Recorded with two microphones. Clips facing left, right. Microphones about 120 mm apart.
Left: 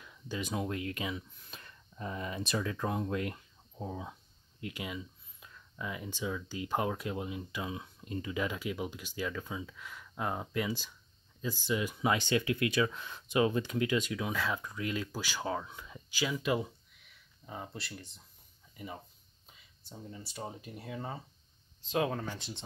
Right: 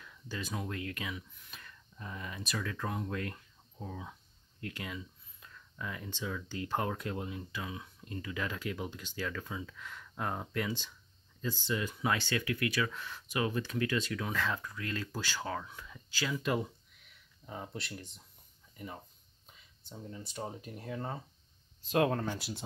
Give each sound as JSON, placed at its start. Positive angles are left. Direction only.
{"t": 0.0, "sound": "speech", "side_deg": 15}
{"t": 7.6, "sound": "speech", "side_deg": 25}